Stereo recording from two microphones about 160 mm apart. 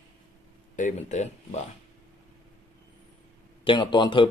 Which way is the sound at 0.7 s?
50° left (ahead or behind).